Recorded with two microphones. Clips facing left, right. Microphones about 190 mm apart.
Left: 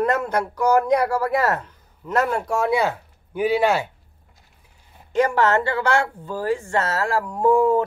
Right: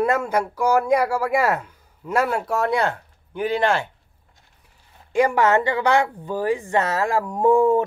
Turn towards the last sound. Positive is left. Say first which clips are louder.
# right 1 dB
turn(degrees=-20)  # may be behind; listen again after turning